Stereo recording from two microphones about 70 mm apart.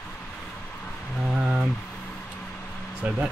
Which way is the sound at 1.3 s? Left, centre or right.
Centre.